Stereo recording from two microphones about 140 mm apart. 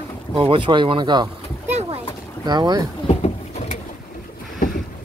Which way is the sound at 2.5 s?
30° right (ahead or behind).